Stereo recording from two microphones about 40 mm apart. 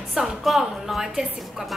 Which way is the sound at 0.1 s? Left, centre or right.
Centre.